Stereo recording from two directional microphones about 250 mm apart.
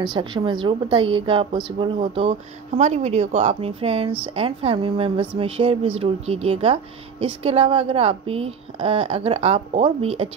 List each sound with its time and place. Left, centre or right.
0.1 s speech: centre